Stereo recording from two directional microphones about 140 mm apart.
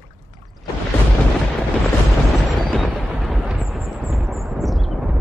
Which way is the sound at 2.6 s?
Centre (ahead or behind).